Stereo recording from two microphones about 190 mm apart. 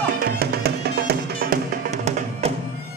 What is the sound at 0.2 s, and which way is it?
Music, 55° right (ahead or behind).